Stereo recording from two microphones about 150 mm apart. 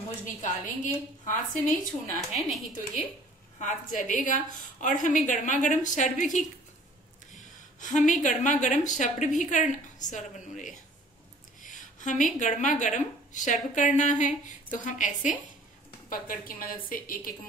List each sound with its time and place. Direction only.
0.2 s speech: 60° left (ahead or behind)
2.3 s a woman's voice: centre (ahead or behind)
3.5 s speech: 60° left (ahead or behind)
11.6 s a sound: 55° left (ahead or behind)
12.4 s speech: 55° left (ahead or behind)
16.1 s a woman's voice: 70° left (ahead or behind)